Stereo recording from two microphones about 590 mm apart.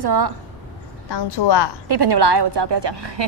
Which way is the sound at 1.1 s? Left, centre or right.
Left.